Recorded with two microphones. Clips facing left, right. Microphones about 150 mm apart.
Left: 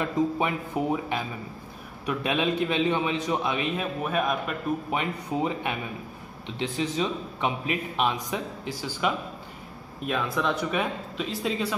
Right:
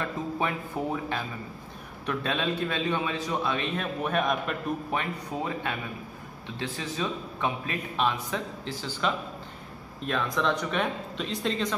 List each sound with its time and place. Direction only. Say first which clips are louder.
0.0 s a man's voice: left 5 dB; 15° left (ahead or behind)
4.9 s a man's voice: left 3 dB; 15° left (ahead or behind)